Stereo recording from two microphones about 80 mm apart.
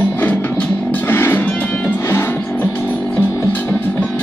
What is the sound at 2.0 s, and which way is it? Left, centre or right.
Music, left.